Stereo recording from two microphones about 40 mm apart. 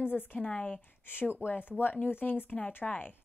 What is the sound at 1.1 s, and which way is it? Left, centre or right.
Speech, left.